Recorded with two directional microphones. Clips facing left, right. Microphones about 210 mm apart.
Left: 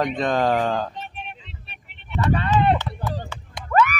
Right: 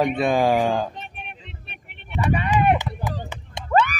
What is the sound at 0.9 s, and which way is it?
Vehicle, 55° right (ahead or behind).